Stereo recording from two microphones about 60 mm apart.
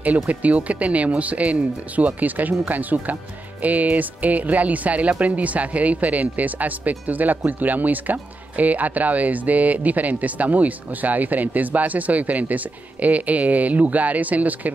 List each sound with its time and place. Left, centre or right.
0.0 s speech: right